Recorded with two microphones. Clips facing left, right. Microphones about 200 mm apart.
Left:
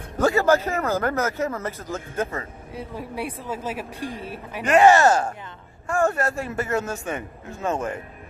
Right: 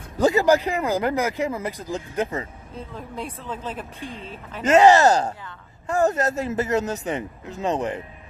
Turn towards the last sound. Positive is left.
turn(degrees=-20)  # may be behind; listen again after turning